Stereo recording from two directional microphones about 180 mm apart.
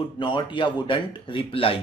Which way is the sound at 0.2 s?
25° left (ahead or behind).